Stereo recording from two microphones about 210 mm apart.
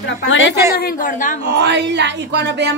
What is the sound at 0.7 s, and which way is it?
Speech, 45° left (ahead or behind).